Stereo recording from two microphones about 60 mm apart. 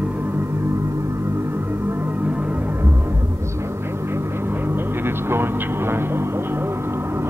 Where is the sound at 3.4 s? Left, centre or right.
Right.